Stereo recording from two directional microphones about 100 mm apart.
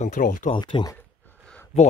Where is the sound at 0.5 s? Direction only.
50° left (ahead or behind).